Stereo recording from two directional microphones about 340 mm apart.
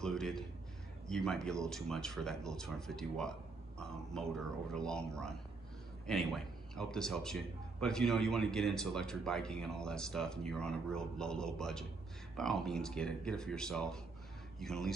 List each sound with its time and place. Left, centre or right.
0.0 s speech: centre